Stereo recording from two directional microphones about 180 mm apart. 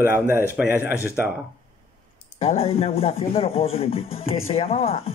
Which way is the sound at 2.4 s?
35° left (ahead or behind).